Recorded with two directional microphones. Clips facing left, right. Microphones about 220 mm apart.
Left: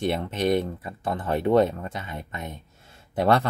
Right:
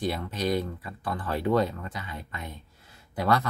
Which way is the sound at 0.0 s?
25° left (ahead or behind).